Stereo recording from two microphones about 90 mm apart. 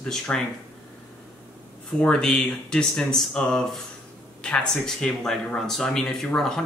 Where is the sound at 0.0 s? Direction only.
5° left (ahead or behind).